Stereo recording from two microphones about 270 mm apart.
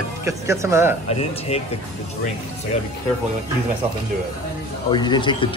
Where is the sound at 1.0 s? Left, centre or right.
Left.